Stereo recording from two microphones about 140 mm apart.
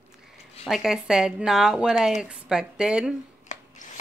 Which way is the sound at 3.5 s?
60° left (ahead or behind).